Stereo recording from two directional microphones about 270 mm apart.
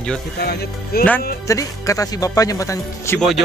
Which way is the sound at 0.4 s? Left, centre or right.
Left.